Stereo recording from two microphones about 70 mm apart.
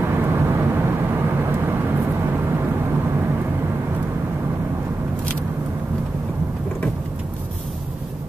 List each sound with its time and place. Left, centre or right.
0.0 s vehicle: right